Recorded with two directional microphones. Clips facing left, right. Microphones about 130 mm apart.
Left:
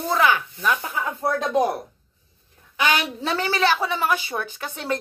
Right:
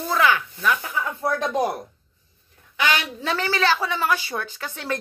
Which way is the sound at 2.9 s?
20° left (ahead or behind).